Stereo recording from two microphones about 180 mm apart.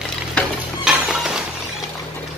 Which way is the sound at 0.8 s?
5° right (ahead or behind).